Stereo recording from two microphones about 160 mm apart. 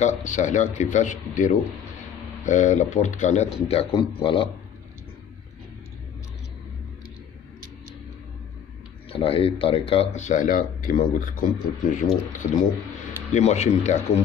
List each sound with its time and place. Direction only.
0.0 s speech: 50° left (ahead or behind)
3.6 s a man's voice: 35° left (ahead or behind)
9.1 s speech: 35° left (ahead or behind)